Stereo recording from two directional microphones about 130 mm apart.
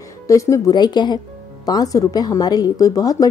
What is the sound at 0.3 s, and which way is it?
A woman's voice, 25° left (ahead or behind).